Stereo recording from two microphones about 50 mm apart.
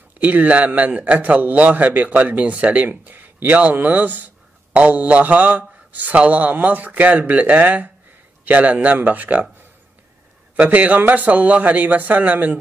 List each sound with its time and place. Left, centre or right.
0.2 s a man's voice: right
10.5 s a man's voice: right